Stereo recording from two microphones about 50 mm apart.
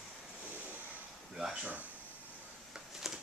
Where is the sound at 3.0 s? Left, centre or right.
Centre.